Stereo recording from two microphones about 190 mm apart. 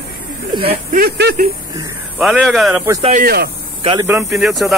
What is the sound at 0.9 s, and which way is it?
Speech, 55° right (ahead or behind).